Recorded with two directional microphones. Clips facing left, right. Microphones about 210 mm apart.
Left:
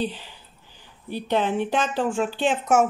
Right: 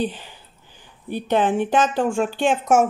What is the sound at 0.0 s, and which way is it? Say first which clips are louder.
Speech: right 3 dB; 50° right (ahead or behind).